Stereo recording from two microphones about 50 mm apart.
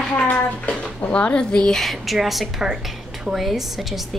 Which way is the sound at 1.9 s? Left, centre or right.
Centre.